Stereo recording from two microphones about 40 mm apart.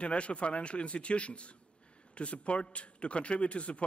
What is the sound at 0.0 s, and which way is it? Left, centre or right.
A man's voice, left.